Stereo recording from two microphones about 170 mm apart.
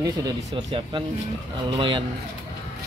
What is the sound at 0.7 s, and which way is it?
Speech, 30° right (ahead or behind).